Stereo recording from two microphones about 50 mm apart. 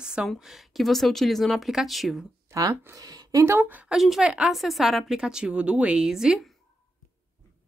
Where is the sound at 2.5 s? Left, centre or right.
Right.